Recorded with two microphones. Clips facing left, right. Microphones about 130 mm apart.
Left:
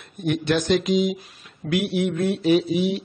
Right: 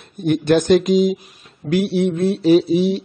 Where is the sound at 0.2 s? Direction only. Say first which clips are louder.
Right 6 dB; 40° right (ahead or behind).